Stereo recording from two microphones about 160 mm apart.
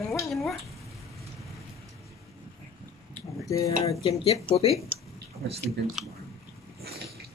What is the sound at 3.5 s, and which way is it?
Speech, 20° left (ahead or behind).